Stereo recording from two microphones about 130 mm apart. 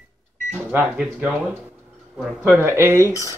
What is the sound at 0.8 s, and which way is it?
Speech, 5° right (ahead or behind).